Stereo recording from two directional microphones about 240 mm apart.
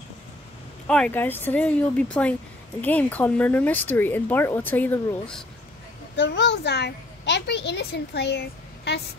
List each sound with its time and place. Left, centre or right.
0.8 s speech: centre
6.2 s a child's voice: left